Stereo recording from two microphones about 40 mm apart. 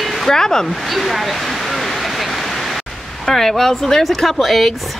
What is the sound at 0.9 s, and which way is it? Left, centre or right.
Speech, centre.